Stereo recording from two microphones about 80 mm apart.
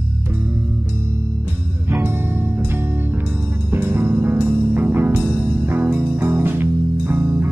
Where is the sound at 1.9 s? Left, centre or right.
Right.